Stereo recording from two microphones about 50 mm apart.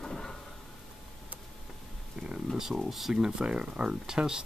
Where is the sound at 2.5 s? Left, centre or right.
Centre.